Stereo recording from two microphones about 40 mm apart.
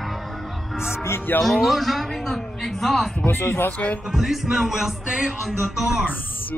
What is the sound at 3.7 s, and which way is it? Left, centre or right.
Speech, left.